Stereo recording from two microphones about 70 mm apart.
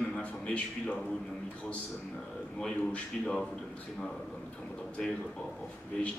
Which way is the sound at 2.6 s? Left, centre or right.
Centre.